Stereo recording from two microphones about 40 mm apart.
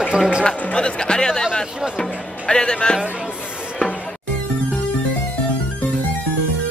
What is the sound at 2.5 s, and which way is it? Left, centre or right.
Speech, centre.